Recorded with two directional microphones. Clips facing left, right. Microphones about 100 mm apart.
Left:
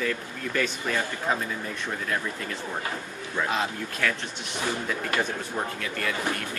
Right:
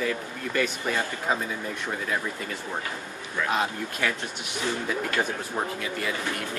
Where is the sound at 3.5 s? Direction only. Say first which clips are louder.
Right 1 dB; 5° right (ahead or behind).